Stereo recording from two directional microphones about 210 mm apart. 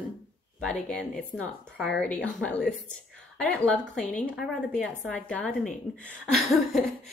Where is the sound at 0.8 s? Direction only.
5° left (ahead or behind).